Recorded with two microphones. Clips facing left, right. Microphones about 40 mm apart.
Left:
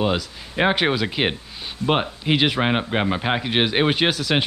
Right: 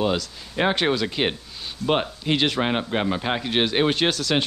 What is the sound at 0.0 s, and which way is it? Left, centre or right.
Speech, centre.